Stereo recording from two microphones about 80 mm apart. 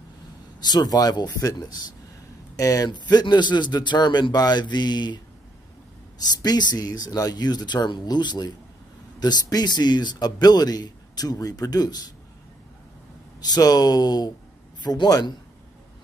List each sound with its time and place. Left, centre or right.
0.6 s speech: left
2.9 s speech: left
6.4 s speech: left
13.4 s a man's voice: left